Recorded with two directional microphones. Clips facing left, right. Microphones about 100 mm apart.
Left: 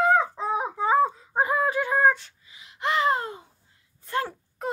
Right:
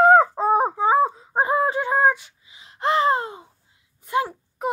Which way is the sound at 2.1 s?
10° right (ahead or behind).